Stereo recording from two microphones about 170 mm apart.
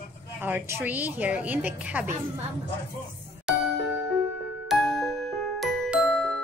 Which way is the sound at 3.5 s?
5° right (ahead or behind).